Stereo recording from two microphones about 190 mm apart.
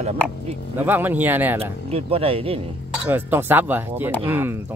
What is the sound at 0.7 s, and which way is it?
Speech, 10° right (ahead or behind).